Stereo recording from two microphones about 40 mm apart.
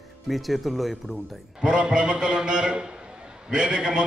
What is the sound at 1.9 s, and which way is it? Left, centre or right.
A man's voice, right.